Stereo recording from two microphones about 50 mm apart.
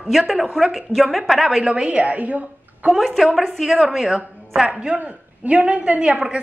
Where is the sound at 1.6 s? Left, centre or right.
Right.